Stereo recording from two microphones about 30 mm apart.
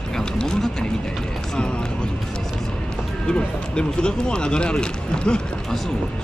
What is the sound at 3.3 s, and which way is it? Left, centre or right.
Speech, left.